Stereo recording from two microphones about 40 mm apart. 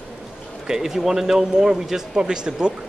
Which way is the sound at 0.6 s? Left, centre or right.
Centre.